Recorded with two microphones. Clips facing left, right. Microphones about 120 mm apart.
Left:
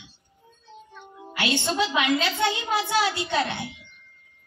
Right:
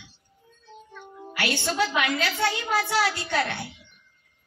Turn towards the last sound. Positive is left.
turn(degrees=20)  # may be behind; listen again after turning